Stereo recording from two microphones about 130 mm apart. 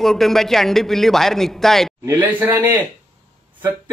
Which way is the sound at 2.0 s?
15° right (ahead or behind).